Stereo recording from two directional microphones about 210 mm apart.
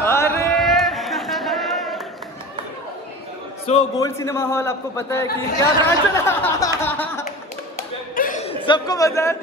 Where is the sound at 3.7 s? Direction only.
30° left (ahead or behind).